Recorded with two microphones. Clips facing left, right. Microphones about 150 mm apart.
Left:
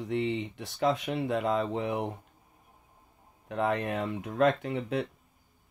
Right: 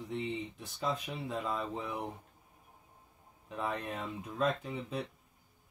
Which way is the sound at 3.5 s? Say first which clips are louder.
Left 8 dB; 80° left.